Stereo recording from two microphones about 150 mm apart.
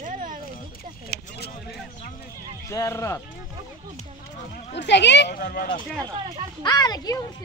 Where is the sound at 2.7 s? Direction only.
20° left (ahead or behind).